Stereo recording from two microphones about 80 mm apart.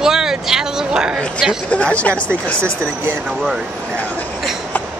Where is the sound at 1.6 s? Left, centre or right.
Centre.